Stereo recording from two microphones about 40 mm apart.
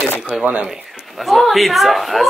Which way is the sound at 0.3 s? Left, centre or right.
Centre.